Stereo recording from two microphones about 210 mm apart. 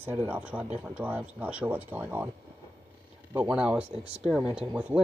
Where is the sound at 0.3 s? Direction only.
5° right (ahead or behind).